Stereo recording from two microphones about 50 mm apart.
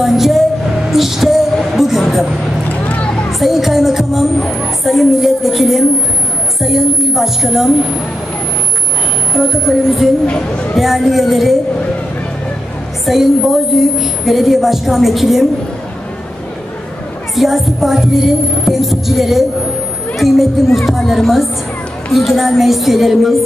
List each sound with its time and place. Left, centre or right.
0.0 s music: centre
3.3 s music: centre
4.5 s a woman's voice: centre
9.3 s a woman's voice: centre
10.2 s speech: left
10.8 s a woman's voice: centre
13.0 s a woman's voice: centre
17.4 s a woman's voice: centre